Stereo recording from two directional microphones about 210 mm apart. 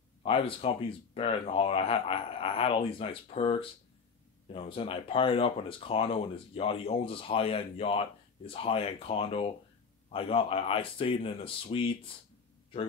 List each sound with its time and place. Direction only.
0.2 s speech: 25° left (ahead or behind)